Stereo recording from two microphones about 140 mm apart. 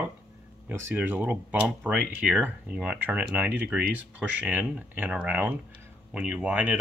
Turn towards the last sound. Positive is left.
turn(degrees=-10)  # may be behind; listen again after turning